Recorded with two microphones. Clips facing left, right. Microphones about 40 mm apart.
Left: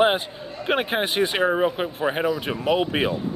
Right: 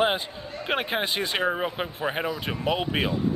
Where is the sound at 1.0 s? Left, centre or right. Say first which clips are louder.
Left 5 dB; left.